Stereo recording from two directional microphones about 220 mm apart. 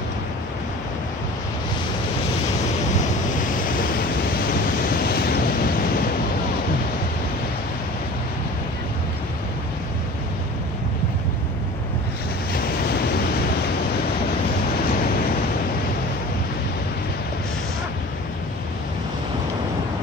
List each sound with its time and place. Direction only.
4.8 s waves: 45° left (ahead or behind)
12.5 s waves: 45° left (ahead or behind)